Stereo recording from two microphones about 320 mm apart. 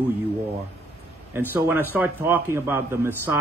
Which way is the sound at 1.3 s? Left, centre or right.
Centre.